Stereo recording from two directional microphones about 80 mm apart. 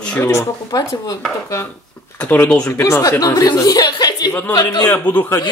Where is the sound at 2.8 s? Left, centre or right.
Left.